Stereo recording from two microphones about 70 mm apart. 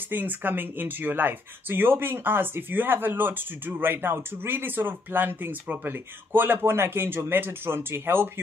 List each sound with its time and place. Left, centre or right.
0.1 s speech: right